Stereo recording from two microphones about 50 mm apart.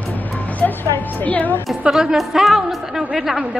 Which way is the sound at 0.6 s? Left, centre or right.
Left.